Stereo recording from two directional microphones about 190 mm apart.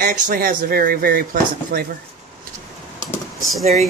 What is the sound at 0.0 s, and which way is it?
Speech, 50° right (ahead or behind).